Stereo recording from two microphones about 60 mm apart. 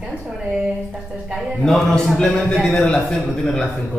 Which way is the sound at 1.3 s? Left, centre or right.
Centre.